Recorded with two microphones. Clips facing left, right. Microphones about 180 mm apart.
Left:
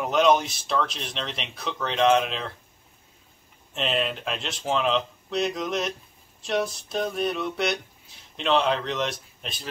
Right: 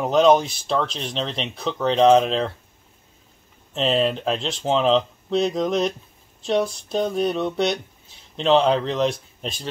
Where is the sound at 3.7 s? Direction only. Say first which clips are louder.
Right 6 dB; 35° right (ahead or behind).